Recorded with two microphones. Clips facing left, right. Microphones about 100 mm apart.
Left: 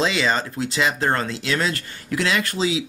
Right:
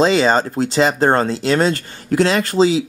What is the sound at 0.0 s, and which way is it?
Speech, 35° right (ahead or behind).